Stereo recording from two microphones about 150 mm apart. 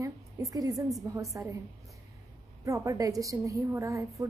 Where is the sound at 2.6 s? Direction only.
20° right (ahead or behind).